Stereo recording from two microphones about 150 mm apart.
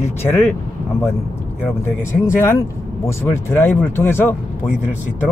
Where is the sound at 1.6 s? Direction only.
15° left (ahead or behind).